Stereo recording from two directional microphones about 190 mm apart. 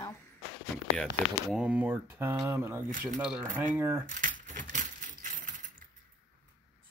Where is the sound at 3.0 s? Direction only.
Centre (ahead or behind).